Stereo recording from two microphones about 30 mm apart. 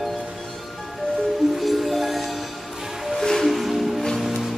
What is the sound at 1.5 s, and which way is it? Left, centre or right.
Music, centre.